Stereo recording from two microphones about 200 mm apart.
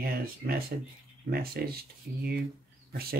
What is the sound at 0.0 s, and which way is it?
Speech, 50° right (ahead or behind).